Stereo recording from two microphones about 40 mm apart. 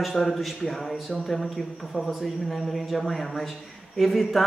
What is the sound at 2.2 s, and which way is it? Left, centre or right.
A man's voice, centre.